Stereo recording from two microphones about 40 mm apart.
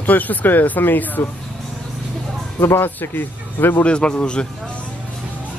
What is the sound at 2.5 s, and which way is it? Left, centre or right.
Speech, left.